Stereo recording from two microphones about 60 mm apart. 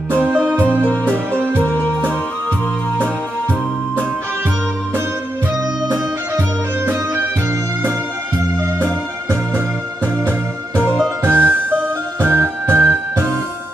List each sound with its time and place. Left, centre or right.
1.4 s music: right
1.7 s music: left
8.7 s music: right
11.2 s music: right